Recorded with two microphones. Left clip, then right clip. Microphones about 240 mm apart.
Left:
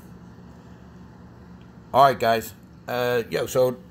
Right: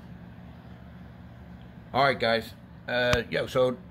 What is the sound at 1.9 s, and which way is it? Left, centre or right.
Speech, centre.